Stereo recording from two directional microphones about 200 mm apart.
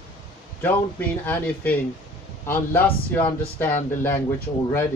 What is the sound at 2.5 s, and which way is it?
Speech, 10° left (ahead or behind).